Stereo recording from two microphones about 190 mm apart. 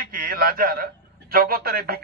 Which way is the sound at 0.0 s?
50° right (ahead or behind).